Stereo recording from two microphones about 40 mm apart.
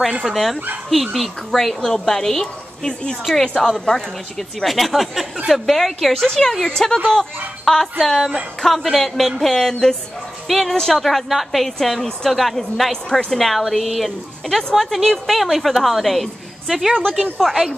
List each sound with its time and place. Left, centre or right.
0.3 s a woman's voice: centre
4.6 s a woman's voice: centre
17.4 s a woman's voice: centre